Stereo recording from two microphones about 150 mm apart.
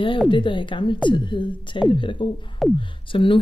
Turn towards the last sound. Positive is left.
turn(degrees=35)  # may be behind; listen again after turning